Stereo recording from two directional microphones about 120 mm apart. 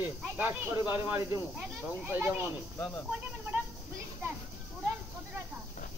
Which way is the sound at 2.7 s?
15° left (ahead or behind).